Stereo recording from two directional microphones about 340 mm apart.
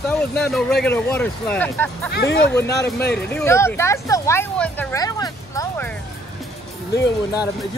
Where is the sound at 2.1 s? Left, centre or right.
Left.